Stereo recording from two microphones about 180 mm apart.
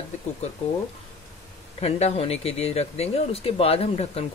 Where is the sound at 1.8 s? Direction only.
35° left (ahead or behind).